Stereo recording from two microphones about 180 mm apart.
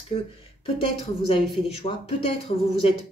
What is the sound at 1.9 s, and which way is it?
Speech, 30° left (ahead or behind).